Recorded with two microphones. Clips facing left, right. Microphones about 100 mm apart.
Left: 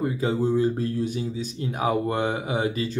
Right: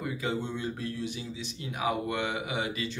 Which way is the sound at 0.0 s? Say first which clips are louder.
Left 8 dB; 35° left (ahead or behind).